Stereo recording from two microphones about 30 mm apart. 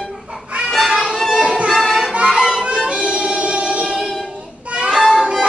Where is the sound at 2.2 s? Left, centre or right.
Right.